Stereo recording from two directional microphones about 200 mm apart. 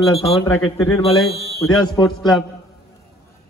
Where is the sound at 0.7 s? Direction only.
30° left (ahead or behind).